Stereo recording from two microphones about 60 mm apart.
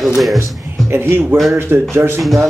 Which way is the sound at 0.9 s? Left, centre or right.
Right.